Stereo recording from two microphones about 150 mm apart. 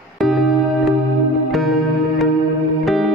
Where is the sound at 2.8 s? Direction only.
Centre (ahead or behind).